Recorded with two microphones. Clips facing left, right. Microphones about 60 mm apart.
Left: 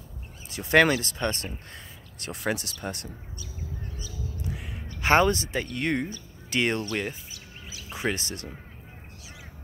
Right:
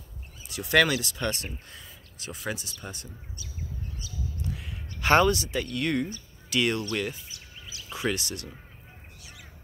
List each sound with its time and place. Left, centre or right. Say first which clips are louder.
0.5 s speech: left 2 dB; left
4.5 s a sound: left 1 dB; left
6.5 s speech: even; left